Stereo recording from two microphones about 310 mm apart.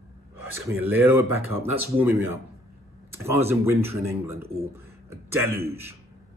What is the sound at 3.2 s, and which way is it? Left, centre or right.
Speech, centre.